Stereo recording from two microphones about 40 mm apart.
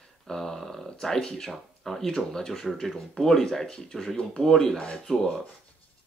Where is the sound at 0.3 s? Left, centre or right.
Centre.